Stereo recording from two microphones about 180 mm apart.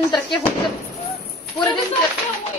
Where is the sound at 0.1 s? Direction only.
25° left (ahead or behind).